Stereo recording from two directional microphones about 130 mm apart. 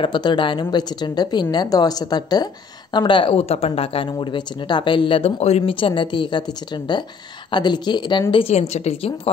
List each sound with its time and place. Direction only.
0.0 s a woman's voice: 35° left (ahead or behind)
8.3 s a woman's voice: 45° left (ahead or behind)